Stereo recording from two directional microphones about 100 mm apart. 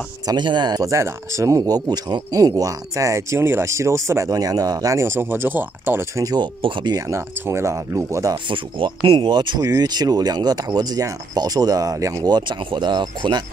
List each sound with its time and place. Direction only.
0.3 s speech: 50° right (ahead or behind); by 6.2 s 25° right (ahead or behind)
6.2 s speech: 45° right (ahead or behind)
7.0 s speech: 30° right (ahead or behind)
8.5 s speech: 55° right (ahead or behind)
9.6 s speech: 40° right (ahead or behind)